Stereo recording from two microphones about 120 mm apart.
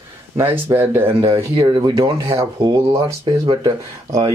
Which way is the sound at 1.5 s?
35° right (ahead or behind).